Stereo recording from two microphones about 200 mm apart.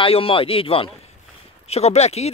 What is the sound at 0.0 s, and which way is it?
Speech, 25° left (ahead or behind).